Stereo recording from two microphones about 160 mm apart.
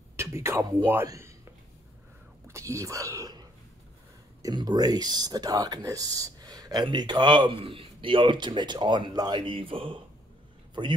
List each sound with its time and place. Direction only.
0.1 s a man's voice: 15° right (ahead or behind); by 10.0 s 35° right (ahead or behind)